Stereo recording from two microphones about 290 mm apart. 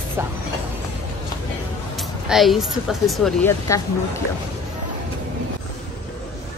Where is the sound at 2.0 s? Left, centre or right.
Centre.